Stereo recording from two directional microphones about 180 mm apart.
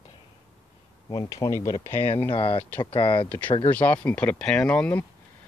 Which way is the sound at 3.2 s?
10° left (ahead or behind).